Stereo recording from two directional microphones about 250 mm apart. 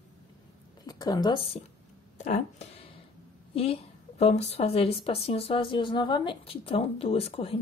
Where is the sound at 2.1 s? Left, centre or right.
Left.